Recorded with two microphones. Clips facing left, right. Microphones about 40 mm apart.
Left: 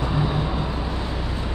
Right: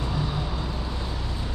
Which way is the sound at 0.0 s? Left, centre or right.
Left.